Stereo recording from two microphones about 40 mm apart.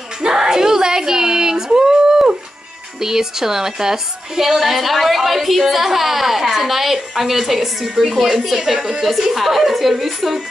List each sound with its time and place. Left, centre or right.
0.2 s a sound: centre
3.0 s a woman's voice: centre
7.9 s a woman's voice: right
8.2 s a woman's voice: centre